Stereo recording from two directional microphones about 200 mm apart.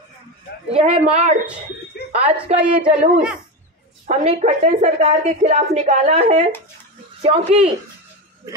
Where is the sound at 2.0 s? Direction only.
55° left (ahead or behind).